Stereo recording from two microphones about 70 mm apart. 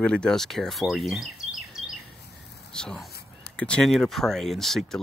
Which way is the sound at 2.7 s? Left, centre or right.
Centre.